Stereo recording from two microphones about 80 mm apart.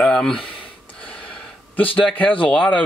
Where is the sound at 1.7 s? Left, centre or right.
Centre.